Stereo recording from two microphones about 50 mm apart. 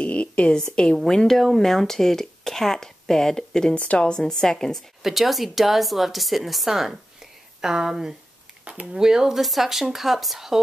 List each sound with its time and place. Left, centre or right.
0.0 s a sound: left
0.9 s speech: centre
3.7 s a woman's voice: left
4.1 s speech: centre
5.0 s speech: centre
8.6 s speech: right
9.0 s speech: centre